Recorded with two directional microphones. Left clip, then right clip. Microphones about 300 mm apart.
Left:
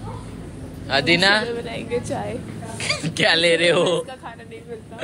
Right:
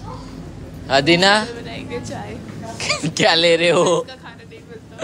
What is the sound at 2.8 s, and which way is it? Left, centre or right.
Speech, centre.